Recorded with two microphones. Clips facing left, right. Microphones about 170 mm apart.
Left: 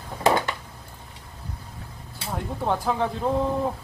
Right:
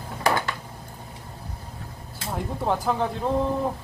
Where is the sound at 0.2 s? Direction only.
25° left (ahead or behind).